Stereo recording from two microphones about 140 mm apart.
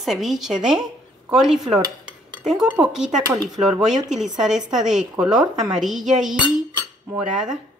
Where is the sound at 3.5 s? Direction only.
Centre (ahead or behind).